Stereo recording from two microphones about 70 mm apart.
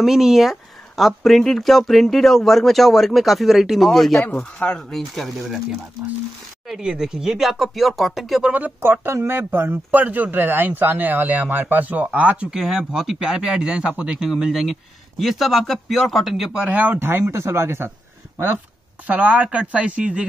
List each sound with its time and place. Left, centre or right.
0.0 s speech: centre
4.3 s speech: centre
4.9 s speech: centre
8.5 s speech: right
12.5 s speech: centre
16.6 s speech: right
19.0 s speech: centre